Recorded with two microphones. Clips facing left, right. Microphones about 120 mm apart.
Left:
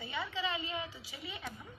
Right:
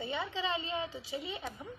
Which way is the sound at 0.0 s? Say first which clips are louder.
Right 2 dB; 25° right (ahead or behind).